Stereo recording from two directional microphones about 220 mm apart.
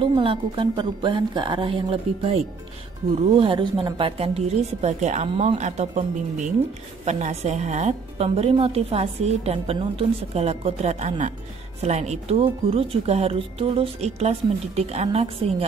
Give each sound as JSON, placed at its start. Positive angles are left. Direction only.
{"t": 0.0, "sound": "a woman's voice", "side_deg": -25}